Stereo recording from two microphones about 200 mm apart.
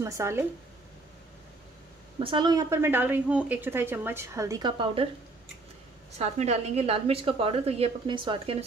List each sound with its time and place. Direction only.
0.0 s a woman's voice: 15° right (ahead or behind)
2.1 s a woman's voice: 25° right (ahead or behind)
6.1 s a woman's voice: 30° right (ahead or behind)